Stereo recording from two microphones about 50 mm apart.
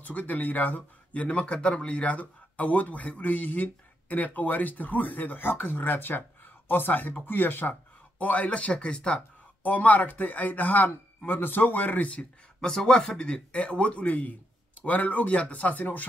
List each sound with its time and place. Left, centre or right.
0.0 s speech: left
8.2 s a man's voice: left
9.6 s speech: left
12.5 s a man's voice: centre; by 16.1 s left